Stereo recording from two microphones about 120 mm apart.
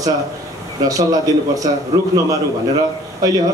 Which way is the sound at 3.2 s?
30° right (ahead or behind).